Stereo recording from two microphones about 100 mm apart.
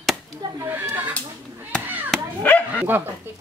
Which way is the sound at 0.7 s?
20° right (ahead or behind).